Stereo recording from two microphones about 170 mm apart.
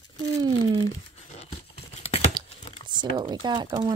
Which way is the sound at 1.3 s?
40° left (ahead or behind).